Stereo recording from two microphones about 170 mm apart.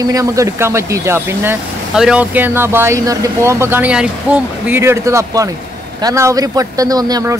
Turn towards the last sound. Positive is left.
turn(degrees=-20)  # may be behind; listen again after turning